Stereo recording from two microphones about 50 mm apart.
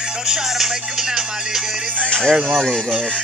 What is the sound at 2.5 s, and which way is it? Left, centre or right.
Speech, centre.